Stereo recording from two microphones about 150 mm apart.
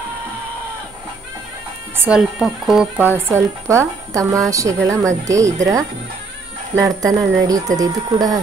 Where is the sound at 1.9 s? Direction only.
10° right (ahead or behind).